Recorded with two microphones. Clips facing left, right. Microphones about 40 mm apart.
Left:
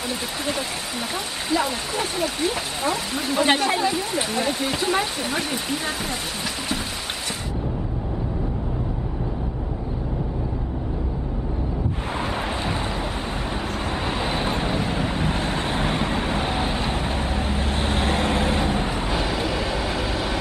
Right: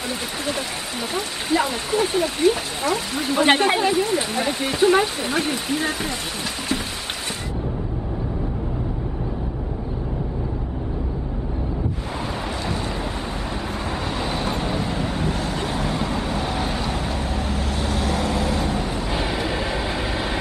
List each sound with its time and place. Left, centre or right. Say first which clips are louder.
1.5 s speech: right 3 dB; centre
3.4 s a woman's voice: right 4 dB; right
4.1 s speech: right 1 dB; centre
14.2 s vehicle: even; left
15.2 s vehicle: even; left
19.1 s vehicle: right 1 dB; centre